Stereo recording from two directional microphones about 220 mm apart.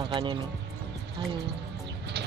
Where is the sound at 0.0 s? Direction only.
20° right (ahead or behind).